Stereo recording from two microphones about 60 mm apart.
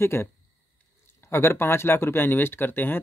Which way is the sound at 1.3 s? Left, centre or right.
Left.